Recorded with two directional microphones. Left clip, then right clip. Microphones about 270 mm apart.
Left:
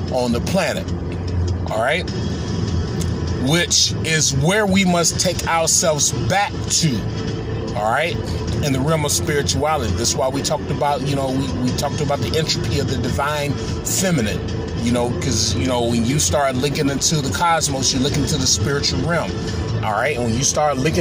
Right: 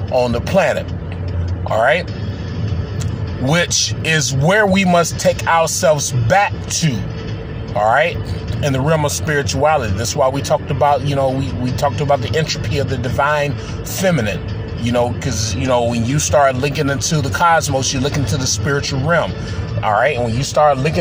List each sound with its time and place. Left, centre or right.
0.2 s speech: right
3.4 s speech: centre